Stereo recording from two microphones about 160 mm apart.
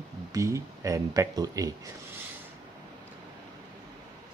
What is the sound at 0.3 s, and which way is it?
Speech, 20° right (ahead or behind).